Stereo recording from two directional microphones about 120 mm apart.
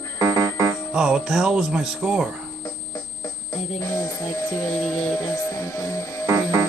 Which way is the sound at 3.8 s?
30° left (ahead or behind).